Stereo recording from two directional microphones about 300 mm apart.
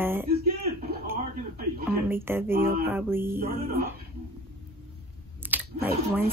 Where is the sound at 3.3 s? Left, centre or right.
Right.